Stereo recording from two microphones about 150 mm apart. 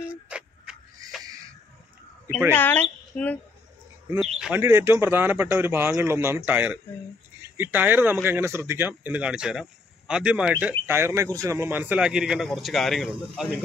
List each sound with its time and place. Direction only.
0.1 s tick-tock: 5° right (ahead or behind)
1.2 s a sound: 25° right (ahead or behind)
2.5 s speech: 15° left (ahead or behind)
4.4 s speech: 10° right (ahead or behind)